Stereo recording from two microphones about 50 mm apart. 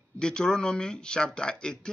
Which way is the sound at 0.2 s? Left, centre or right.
Centre.